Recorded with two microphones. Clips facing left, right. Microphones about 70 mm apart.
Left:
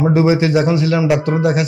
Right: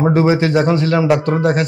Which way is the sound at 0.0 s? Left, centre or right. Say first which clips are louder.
Even; right.